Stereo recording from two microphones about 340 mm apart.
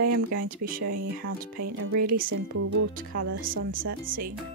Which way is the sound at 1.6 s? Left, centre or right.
Right.